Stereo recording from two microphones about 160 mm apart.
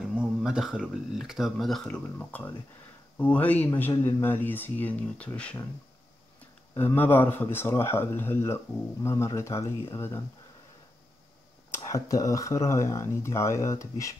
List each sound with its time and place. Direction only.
0.1 s speech: 5° right (ahead or behind)
2.1 s speech: 10° left (ahead or behind)
6.8 s speech: 10° left (ahead or behind)
11.7 s speech: 20° left (ahead or behind)